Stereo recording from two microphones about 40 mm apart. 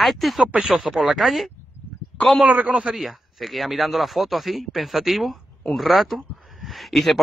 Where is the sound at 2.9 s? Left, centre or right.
Centre.